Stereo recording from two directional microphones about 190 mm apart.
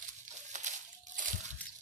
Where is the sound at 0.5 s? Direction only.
40° right (ahead or behind).